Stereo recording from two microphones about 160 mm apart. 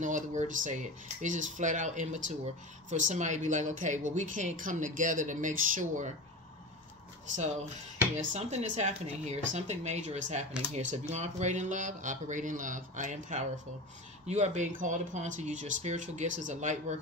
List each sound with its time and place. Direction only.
0.0 s speech: 50° right (ahead or behind)
8.3 s speech: 45° right (ahead or behind)